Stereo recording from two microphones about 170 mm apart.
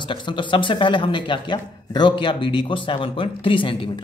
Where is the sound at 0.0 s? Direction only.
30° left (ahead or behind).